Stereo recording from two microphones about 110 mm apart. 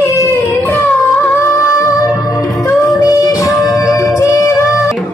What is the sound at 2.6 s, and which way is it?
Music, 30° left (ahead or behind).